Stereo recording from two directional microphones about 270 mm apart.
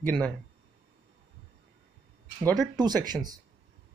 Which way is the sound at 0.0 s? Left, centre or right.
Centre.